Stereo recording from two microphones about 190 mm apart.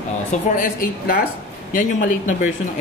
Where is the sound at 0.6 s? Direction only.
45° left (ahead or behind).